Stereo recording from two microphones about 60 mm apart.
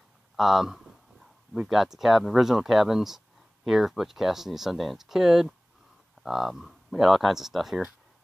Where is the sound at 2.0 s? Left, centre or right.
Centre.